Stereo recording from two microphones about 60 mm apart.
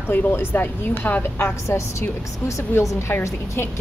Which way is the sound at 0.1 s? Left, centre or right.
Left.